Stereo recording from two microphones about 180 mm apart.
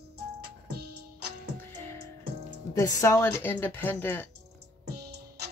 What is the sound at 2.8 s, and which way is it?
A woman's voice, 20° left (ahead or behind).